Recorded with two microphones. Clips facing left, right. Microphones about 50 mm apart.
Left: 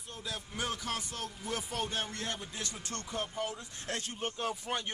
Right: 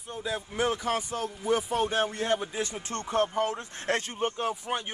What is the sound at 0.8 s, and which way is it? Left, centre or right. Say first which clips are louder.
Speech: right 9 dB; centre.